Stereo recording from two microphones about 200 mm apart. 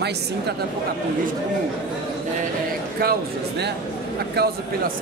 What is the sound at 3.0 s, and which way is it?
Speech, 55° right (ahead or behind).